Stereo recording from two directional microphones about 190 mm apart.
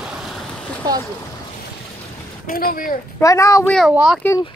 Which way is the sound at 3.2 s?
15° left (ahead or behind).